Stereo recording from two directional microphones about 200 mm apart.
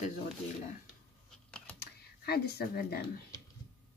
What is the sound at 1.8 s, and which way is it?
Speech, 50° left (ahead or behind).